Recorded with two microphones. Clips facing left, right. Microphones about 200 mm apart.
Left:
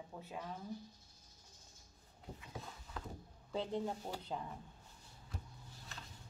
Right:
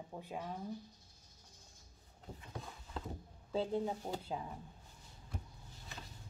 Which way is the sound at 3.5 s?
5° right (ahead or behind).